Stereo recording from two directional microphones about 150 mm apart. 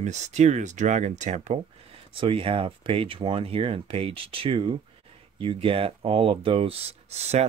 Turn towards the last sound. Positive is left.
turn(degrees=-45)  # may be behind; listen again after turning